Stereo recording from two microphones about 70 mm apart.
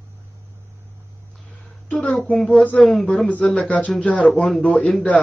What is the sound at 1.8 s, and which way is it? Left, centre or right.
Speech, centre.